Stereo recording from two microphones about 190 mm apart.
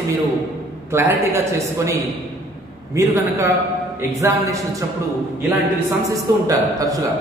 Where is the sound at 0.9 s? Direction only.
15° right (ahead or behind).